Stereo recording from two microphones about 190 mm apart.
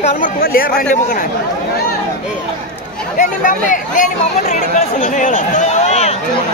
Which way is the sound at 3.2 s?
40° left (ahead or behind).